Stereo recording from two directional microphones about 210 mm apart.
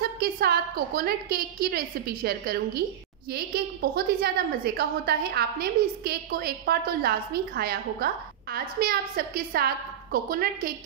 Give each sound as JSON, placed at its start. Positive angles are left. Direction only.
{"t": 0.0, "sound": "a woman's voice", "side_deg": -45}